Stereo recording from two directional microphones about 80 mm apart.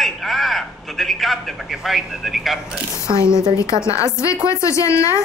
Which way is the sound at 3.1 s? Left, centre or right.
Left.